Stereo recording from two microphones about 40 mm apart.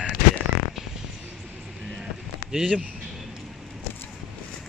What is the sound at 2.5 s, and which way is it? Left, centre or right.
Speech, centre.